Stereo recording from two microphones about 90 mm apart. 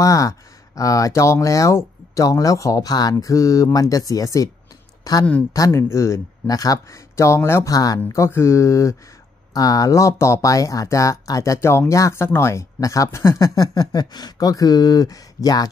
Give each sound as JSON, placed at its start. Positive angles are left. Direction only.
{"t": 0.0, "sound": "speech", "side_deg": 40}
{"t": 7.7, "sound": "speech", "side_deg": 45}
{"t": 8.1, "sound": "speech", "side_deg": 30}